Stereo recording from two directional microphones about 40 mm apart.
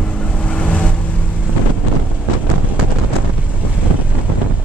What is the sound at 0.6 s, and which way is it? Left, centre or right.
Vehicle, left.